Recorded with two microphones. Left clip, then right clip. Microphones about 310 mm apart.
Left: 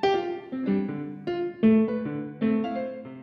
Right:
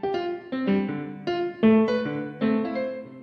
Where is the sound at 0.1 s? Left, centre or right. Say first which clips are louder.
Left 1 dB; centre.